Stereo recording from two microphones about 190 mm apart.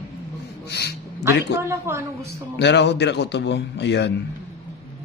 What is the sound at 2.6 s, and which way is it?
Speech, 65° left (ahead or behind).